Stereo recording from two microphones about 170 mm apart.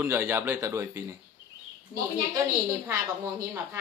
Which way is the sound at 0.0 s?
15° right (ahead or behind).